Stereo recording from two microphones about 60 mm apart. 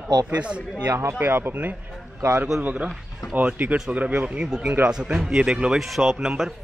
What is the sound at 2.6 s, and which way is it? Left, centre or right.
Speech, right.